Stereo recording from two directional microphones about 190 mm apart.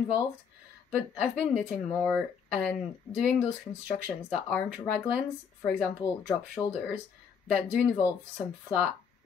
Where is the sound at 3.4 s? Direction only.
20° left (ahead or behind).